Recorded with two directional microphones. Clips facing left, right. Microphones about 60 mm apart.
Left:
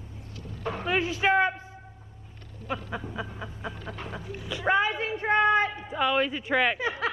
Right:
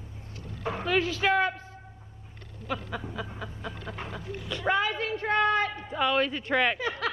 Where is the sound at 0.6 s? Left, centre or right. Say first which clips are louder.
Even; centre.